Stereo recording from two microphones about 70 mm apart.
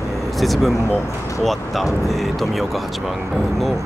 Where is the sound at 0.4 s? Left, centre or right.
Centre.